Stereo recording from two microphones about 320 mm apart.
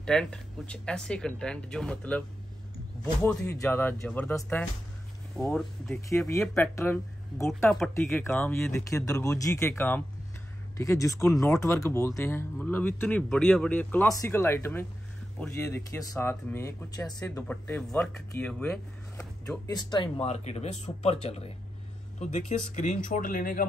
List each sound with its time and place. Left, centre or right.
0.0 s speech: centre
3.3 s speech: centre; by 23.6 s left